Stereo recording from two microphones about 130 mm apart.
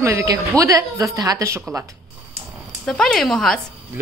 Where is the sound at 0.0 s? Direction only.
25° right (ahead or behind).